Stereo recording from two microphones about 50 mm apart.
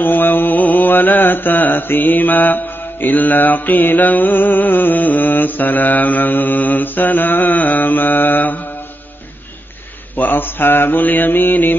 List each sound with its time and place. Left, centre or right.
0.0 s mantra: left
10.1 s mantra: left